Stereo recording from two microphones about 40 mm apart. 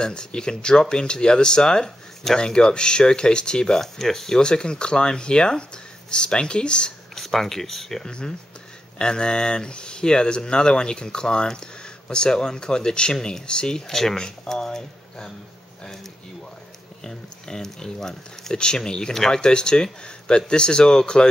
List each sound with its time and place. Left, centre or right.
0.0 s speech: left
3.8 s speech: centre; by 6.9 s left
7.2 s speech: centre
8.1 s speech: left